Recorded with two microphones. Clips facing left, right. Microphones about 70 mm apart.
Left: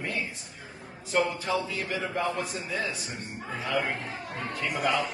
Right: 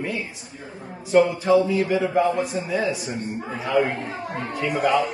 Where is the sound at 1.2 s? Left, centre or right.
Centre.